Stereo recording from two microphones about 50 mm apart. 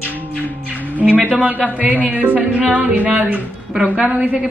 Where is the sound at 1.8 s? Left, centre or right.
Right.